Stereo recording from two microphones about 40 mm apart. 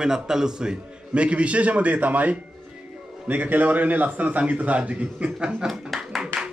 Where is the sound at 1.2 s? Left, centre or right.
Right.